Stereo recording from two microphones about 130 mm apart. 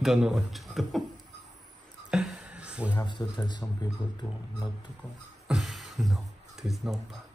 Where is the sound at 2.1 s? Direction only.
5° right (ahead or behind).